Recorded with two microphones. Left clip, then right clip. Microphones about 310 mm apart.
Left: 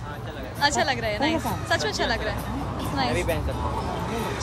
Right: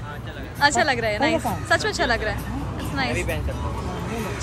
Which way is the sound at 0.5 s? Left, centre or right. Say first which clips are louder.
Right 4 dB; centre.